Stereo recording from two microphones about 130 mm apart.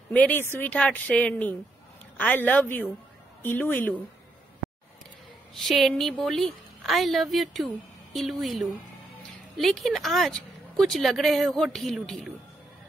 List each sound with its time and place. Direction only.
0.1 s a woman's voice: 10° left (ahead or behind)
5.6 s a woman's voice: centre (ahead or behind)